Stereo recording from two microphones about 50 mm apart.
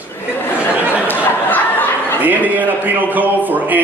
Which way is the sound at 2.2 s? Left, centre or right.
Right.